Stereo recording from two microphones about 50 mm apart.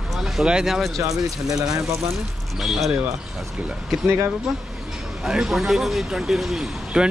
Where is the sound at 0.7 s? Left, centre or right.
Centre.